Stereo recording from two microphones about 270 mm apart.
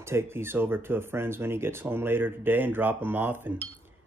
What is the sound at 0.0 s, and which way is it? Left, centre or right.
Speech, centre.